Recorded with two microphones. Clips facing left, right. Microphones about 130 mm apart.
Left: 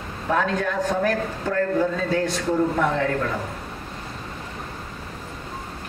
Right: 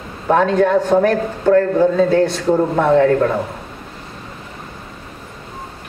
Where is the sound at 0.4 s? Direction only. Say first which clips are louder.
Right 10 dB; 30° right (ahead or behind).